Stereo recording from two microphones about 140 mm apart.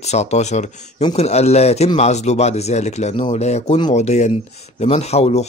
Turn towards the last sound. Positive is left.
turn(degrees=50)  # may be behind; listen again after turning